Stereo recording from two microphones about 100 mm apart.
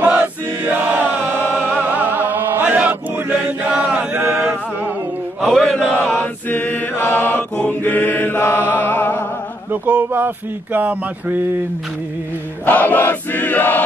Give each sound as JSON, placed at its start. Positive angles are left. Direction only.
{"t": 0.0, "sound": "chant", "side_deg": -20}
{"t": 5.4, "sound": "speech", "side_deg": 0}
{"t": 6.1, "sound": "chant", "side_deg": 20}
{"t": 9.7, "sound": "speech", "side_deg": -15}
{"t": 12.6, "sound": "crowd", "side_deg": 15}